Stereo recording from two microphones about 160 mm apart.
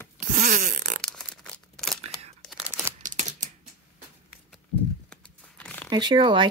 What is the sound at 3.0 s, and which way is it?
Typewriter, 50° right (ahead or behind).